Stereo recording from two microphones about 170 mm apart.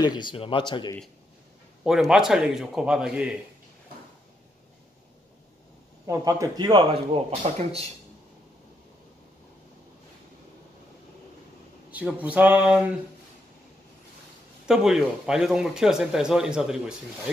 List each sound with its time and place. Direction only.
0.0 s speech: 25° left (ahead or behind)
1.9 s speech: 5° right (ahead or behind)
6.0 s speech: 20° right (ahead or behind); by 7.8 s 40° right (ahead or behind)
11.9 s speech: 10° right (ahead or behind)
14.7 s speech: 5° right (ahead or behind)